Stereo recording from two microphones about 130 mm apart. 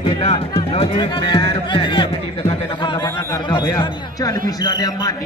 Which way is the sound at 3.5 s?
35° left (ahead or behind).